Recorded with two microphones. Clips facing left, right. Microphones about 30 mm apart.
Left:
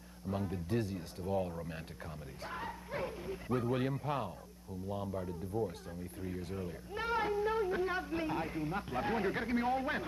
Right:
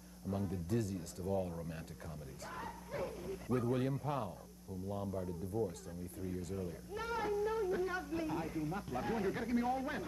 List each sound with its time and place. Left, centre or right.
0.3 s speech: left